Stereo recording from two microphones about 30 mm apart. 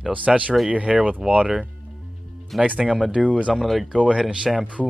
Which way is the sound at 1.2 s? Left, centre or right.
Centre.